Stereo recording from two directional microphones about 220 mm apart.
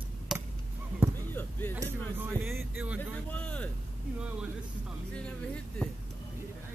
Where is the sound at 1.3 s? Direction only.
10° left (ahead or behind).